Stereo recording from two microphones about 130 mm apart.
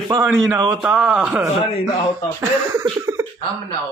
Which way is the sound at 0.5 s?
10° right (ahead or behind).